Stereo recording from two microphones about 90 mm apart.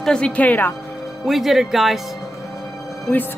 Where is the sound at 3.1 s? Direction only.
20° left (ahead or behind).